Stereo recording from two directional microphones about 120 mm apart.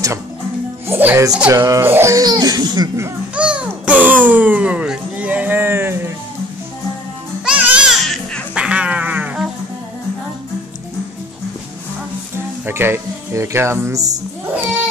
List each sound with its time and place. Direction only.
0.8 s music: 20° right (ahead or behind)
1.5 s speech: 25° right (ahead or behind)
3.3 s a sound: 10° right (ahead or behind)
7.4 s music: 10° right (ahead or behind)
12.6 s music: 20° right (ahead or behind)